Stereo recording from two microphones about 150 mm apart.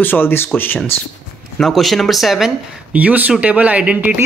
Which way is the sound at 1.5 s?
Centre (ahead or behind).